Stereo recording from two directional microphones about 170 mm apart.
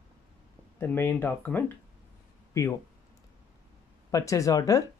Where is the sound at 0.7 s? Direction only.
15° left (ahead or behind).